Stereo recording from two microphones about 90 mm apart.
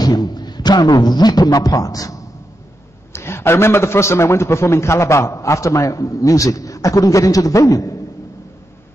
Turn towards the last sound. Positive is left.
turn(degrees=40)  # may be behind; listen again after turning